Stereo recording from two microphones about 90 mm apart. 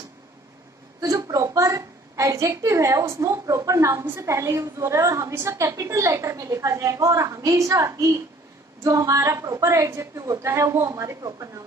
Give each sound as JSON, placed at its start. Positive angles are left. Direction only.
{"t": 1.0, "sound": "a woman's voice", "side_deg": -40}